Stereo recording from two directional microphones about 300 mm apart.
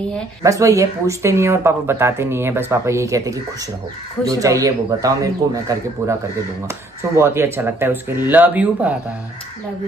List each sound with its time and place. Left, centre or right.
0.4 s speech: centre
7.2 s speech: centre